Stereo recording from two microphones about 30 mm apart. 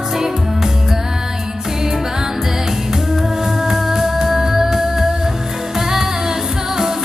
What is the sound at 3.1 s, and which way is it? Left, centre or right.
Music, centre.